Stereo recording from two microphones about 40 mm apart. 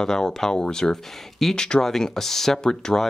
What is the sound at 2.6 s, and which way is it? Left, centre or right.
Speech, centre.